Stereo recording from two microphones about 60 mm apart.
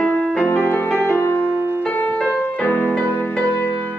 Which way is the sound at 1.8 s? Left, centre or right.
Left.